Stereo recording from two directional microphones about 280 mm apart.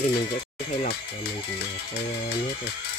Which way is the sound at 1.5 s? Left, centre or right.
Left.